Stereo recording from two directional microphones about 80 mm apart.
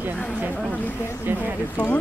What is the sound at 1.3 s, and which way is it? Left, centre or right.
Speech, right.